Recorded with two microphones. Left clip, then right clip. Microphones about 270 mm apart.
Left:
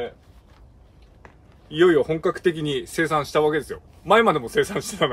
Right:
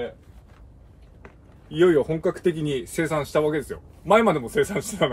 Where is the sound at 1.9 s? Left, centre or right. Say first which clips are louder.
Left 1 dB; centre.